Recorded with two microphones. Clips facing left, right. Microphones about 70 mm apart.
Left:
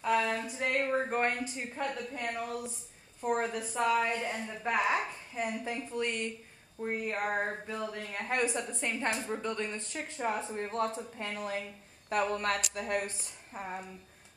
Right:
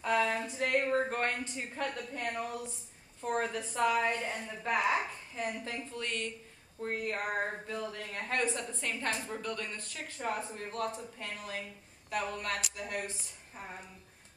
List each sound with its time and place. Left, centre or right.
0.0 s a sound: centre
0.8 s speech: centre
5.6 s speech: centre; by 13.7 s left